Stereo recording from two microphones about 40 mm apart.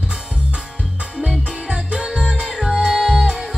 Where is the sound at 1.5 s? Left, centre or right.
Centre.